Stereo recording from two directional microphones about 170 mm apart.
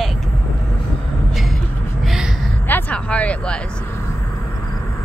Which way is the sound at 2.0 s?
Centre (ahead or behind).